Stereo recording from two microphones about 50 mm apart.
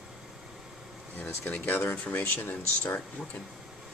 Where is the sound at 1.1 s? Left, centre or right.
Left.